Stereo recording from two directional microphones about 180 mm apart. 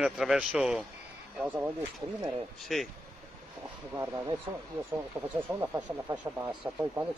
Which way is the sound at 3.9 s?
15° right (ahead or behind).